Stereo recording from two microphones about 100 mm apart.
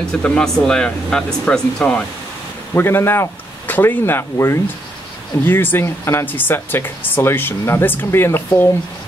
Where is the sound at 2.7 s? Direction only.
25° left (ahead or behind).